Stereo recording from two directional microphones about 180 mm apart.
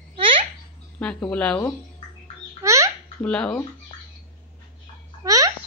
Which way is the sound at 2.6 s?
15° right (ahead or behind).